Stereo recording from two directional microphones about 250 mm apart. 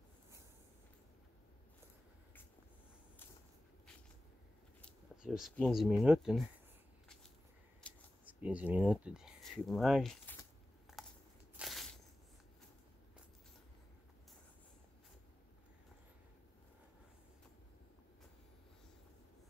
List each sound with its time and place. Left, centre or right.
4.8 s speech: centre
7.8 s scissors: centre
8.3 s speech: centre
11.0 s a sound: centre